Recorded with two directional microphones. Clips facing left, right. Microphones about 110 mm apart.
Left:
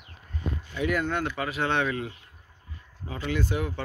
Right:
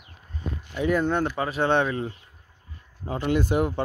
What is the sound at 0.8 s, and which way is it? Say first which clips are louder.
Speech: right 4 dB; 25° right (ahead or behind).